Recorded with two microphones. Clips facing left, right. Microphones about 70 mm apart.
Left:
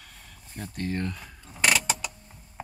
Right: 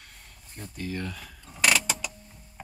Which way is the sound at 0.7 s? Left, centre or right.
Left.